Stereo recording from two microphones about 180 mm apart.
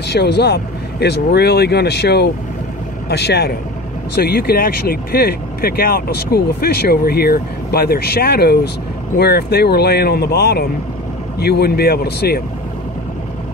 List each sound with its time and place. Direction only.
0.1 s speech: 65° left (ahead or behind)